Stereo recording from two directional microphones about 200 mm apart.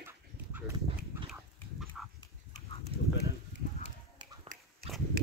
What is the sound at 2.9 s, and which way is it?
Horse, 30° right (ahead or behind).